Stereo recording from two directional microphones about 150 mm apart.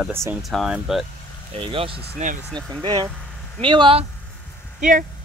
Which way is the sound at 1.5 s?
35° right (ahead or behind).